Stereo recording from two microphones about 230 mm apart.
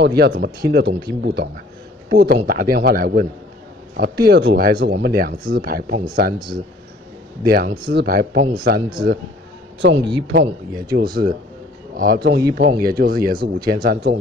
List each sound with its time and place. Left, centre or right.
0.0 s speech: right
7.4 s speech: right